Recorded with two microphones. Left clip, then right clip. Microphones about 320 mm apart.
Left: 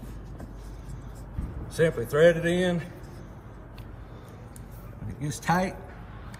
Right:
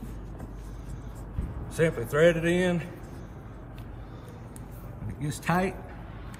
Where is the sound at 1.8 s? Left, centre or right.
Centre.